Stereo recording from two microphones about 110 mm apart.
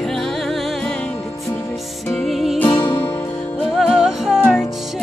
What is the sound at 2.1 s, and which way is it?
Music, centre (ahead or behind).